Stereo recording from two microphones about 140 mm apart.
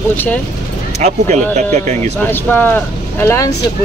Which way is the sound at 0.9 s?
55° right (ahead or behind).